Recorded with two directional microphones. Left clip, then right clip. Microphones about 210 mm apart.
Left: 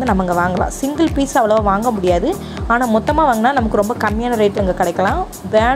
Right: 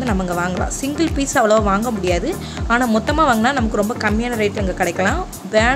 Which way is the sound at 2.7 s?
Centre (ahead or behind).